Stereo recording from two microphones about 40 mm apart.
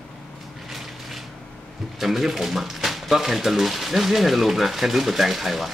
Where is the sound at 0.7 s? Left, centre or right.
Centre.